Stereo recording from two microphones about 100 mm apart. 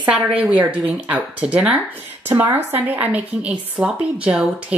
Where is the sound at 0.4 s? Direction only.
15° right (ahead or behind).